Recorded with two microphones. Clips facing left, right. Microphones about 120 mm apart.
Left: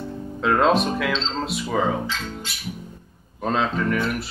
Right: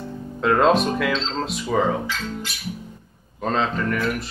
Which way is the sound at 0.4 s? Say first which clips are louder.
Right 1 dB; centre (ahead or behind).